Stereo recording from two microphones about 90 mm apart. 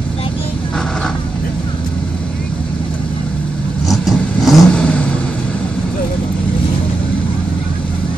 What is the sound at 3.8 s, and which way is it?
Vehicle, centre (ahead or behind).